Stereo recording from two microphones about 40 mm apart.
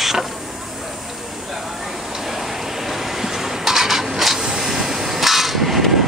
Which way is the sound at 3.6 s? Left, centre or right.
Centre.